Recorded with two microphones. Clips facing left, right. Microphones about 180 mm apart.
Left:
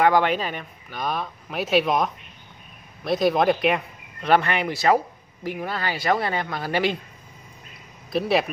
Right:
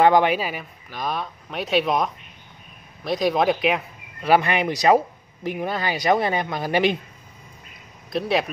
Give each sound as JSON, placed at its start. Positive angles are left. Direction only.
{"t": 0.0, "sound": "speech", "side_deg": -15}
{"t": 8.1, "sound": "speech", "side_deg": 0}